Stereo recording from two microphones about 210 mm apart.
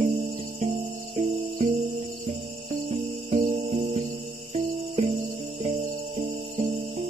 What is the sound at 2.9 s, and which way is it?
Cricket, 30° right (ahead or behind).